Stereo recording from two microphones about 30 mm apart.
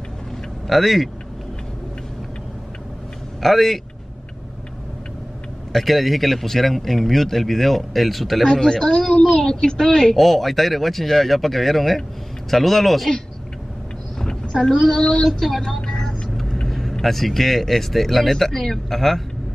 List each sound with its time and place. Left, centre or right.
0.7 s a man's voice: centre
3.4 s a man's voice: centre
5.7 s a man's voice: centre
8.5 s speech: centre
10.1 s a man's voice: centre
14.4 s child singing: left
15.8 s vehicle: left
16.6 s vehicle: centre
17.0 s speech: centre